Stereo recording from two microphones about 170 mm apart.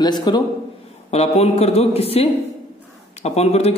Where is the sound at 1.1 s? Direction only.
40° left (ahead or behind).